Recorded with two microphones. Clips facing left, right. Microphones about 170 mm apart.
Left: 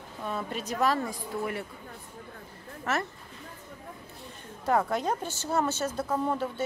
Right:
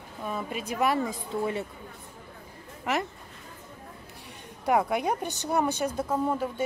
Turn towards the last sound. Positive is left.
turn(degrees=-5)  # may be behind; listen again after turning